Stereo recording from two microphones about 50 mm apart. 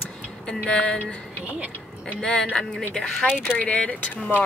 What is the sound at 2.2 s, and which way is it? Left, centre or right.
Speech, left.